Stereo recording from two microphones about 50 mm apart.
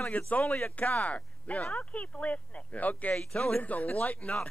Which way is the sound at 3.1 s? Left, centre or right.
Centre.